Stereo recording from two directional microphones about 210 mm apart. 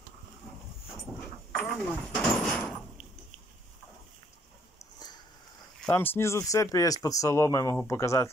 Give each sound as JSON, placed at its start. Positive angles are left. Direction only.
{"t": 1.5, "sound": "a sound", "side_deg": 5}
{"t": 4.9, "sound": "sniff", "side_deg": 20}
{"t": 5.8, "sound": "speech", "side_deg": 10}